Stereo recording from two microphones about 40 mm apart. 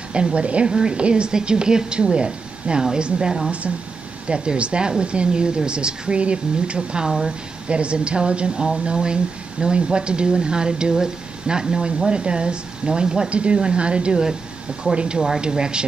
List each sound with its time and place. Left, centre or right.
0.1 s a woman's voice: right